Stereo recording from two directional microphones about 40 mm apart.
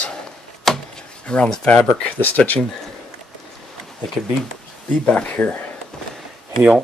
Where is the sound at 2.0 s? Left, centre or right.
Left.